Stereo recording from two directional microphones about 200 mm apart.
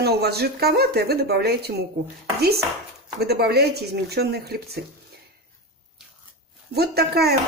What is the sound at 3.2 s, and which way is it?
Speech, 55° right (ahead or behind).